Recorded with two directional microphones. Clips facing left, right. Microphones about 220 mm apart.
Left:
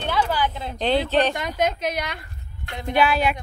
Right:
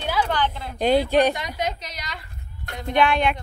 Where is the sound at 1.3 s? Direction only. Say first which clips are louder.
Left 4 dB; 50° left (ahead or behind).